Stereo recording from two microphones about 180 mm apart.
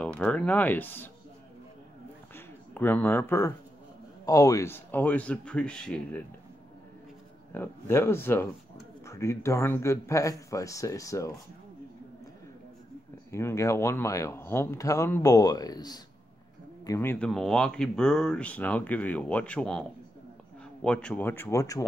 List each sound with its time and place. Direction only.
0.0 s speech: 5° left (ahead or behind)
2.3 s speech: 10° left (ahead or behind)
7.5 s speech: 10° left (ahead or behind)
13.3 s speech: 15° left (ahead or behind)
20.8 s speech: 5° left (ahead or behind)